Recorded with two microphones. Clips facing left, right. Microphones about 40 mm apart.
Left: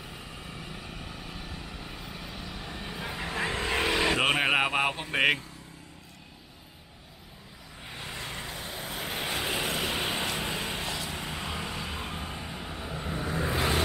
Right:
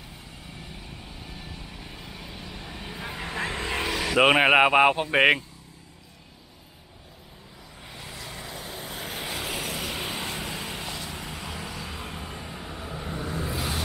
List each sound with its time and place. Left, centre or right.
1.5 s vehicle: centre
3.9 s vehicle: left
4.2 s speech: right
7.9 s vehicle: centre
8.5 s vehicle: centre
13.5 s vehicle: left